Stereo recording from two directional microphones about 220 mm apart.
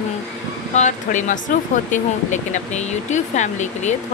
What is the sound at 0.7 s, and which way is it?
Speech, 35° left (ahead or behind).